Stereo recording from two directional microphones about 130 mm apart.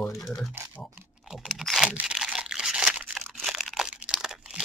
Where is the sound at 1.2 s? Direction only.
5° right (ahead or behind).